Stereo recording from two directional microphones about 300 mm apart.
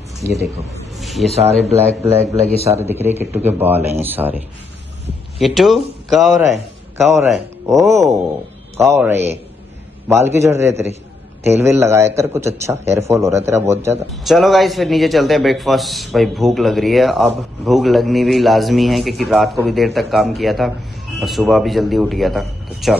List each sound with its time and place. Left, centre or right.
0.7 s a sound: centre
2.3 s a man's voice: left
2.8 s a man's voice: centre
5.4 s a man's voice: centre